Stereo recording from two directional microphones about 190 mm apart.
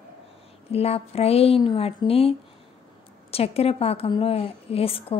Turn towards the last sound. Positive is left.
turn(degrees=30)  # may be behind; listen again after turning